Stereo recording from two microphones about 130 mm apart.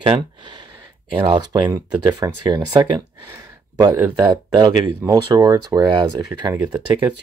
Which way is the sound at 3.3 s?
25° right (ahead or behind).